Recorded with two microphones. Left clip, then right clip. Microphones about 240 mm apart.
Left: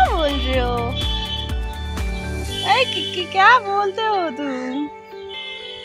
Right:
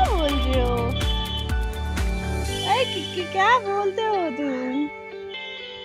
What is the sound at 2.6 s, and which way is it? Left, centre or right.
A child's voice, centre.